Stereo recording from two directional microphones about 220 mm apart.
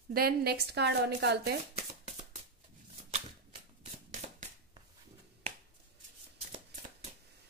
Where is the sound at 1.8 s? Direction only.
30° right (ahead or behind).